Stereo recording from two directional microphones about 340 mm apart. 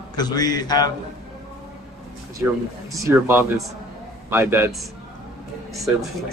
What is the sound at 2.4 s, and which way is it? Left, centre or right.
Speech, centre.